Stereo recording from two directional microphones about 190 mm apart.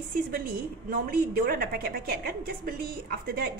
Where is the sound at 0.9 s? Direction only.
50° right (ahead or behind).